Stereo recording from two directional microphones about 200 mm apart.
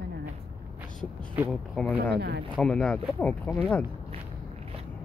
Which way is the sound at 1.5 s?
Centre (ahead or behind).